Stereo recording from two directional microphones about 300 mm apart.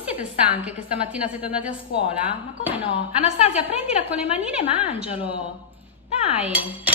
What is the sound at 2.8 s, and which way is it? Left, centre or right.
Speech, centre.